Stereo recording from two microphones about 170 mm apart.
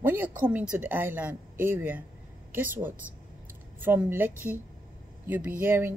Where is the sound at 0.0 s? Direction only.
10° right (ahead or behind).